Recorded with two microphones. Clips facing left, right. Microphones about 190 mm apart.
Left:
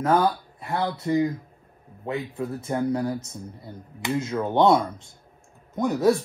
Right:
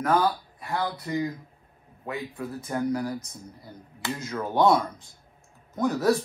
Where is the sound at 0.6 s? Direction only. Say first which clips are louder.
Left 3 dB; 25° left (ahead or behind).